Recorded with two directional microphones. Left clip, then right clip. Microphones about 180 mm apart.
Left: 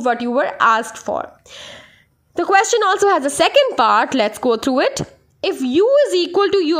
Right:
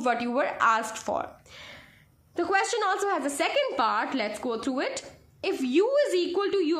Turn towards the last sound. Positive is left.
turn(degrees=50)  # may be behind; listen again after turning